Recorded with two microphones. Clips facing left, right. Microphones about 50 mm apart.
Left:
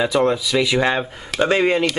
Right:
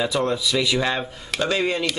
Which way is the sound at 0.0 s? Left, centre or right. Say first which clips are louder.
Left 5 dB; centre.